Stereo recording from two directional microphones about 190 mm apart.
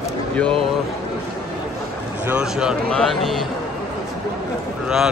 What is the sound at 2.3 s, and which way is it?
Speech, 5° right (ahead or behind).